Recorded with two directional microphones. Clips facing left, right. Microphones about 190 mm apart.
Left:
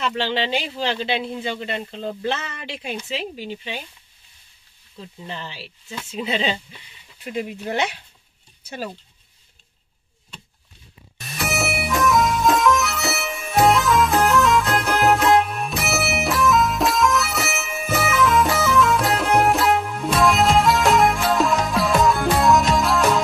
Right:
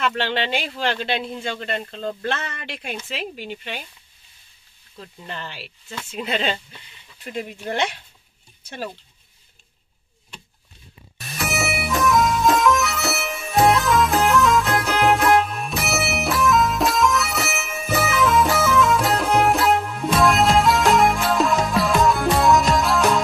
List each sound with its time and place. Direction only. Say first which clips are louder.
0.1 s speech: left 1 dB; centre (ahead or behind)
3.3 s speech: left 1 dB; centre (ahead or behind)
5.0 s speech: left 1 dB; 5° left (ahead or behind)
11.1 s music: left 1 dB; centre (ahead or behind)